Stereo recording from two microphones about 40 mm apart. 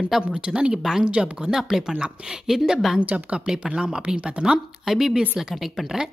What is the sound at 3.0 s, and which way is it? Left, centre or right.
Speech, right.